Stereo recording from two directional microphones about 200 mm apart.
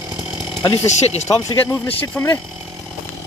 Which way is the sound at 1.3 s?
20° left (ahead or behind).